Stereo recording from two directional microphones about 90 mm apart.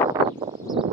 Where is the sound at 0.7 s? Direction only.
50° right (ahead or behind).